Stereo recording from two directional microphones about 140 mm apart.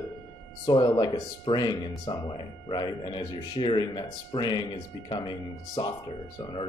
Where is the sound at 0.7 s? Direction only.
30° left (ahead or behind).